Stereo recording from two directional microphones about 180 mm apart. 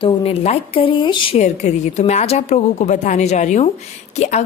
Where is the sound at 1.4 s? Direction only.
40° left (ahead or behind).